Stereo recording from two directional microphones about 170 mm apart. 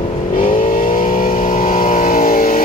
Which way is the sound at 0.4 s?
55° left (ahead or behind).